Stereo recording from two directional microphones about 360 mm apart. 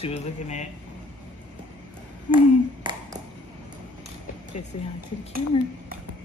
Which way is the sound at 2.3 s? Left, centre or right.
Centre.